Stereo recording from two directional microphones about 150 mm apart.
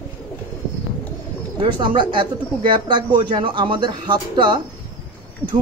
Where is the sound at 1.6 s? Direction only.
35° right (ahead or behind).